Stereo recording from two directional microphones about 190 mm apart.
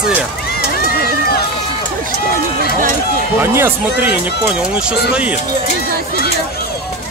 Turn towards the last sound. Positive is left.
turn(degrees=-5)  # may be behind; listen again after turning